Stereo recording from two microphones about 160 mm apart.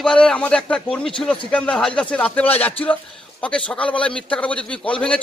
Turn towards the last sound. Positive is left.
turn(degrees=5)  # may be behind; listen again after turning